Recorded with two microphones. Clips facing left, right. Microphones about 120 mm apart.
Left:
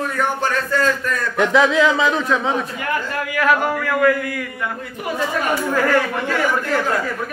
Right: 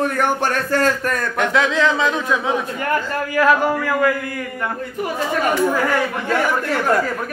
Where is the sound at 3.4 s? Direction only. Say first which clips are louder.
Right 2 dB; 25° right (ahead or behind).